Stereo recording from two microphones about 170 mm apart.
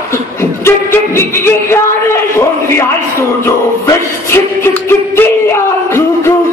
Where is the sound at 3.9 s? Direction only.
15° left (ahead or behind).